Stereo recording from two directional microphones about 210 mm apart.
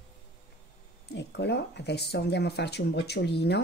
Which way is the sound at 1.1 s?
55° left (ahead or behind).